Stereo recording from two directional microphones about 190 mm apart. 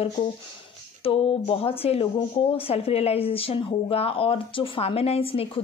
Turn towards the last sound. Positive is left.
turn(degrees=30)  # may be behind; listen again after turning